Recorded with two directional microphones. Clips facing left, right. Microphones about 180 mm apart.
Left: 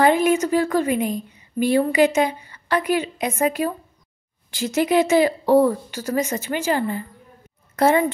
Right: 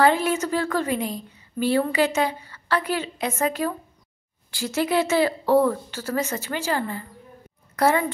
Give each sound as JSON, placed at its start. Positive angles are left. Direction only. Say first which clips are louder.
{"t": 0.0, "sound": "a woman's voice", "louder": "left 3 dB", "side_deg": 15}